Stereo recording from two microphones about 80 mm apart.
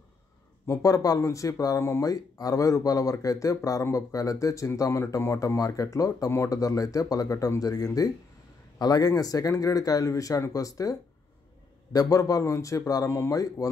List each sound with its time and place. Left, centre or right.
0.8 s speech: left
1.8 s speech: left
2.0 s speech: left